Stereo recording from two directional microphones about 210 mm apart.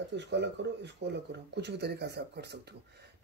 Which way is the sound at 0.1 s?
55° right (ahead or behind).